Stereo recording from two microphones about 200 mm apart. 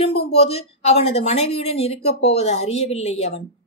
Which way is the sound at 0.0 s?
30° left (ahead or behind).